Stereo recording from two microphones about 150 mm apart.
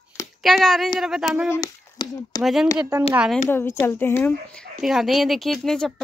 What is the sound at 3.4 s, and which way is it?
Speech, 15° left (ahead or behind).